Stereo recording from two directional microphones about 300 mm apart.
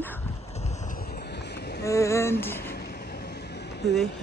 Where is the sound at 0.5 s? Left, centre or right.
Left.